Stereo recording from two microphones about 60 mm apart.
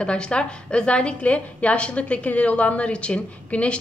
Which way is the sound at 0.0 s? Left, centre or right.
Centre.